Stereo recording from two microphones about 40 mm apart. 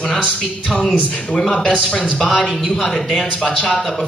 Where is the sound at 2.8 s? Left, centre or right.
Centre.